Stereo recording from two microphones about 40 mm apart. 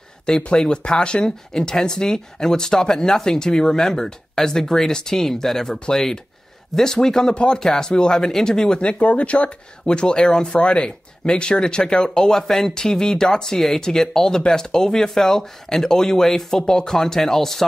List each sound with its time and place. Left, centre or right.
0.4 s speech: left